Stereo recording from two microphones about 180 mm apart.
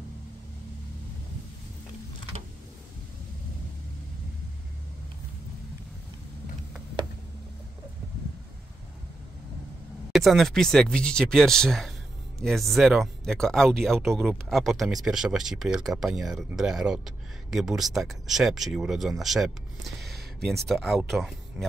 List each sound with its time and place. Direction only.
10.1 s speech: centre (ahead or behind)